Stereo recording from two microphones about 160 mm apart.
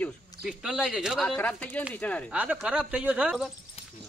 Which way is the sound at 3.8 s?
40° left (ahead or behind).